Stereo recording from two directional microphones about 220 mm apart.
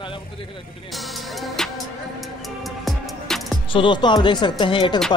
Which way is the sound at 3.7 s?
20° left (ahead or behind).